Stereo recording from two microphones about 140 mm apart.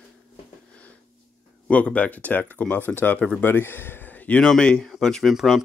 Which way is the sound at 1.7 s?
10° left (ahead or behind).